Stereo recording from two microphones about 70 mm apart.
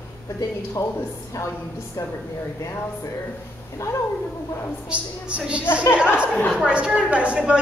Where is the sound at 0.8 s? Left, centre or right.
Left.